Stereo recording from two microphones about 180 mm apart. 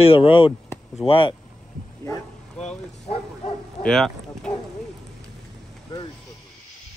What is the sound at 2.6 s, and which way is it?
Speech, 35° left (ahead or behind).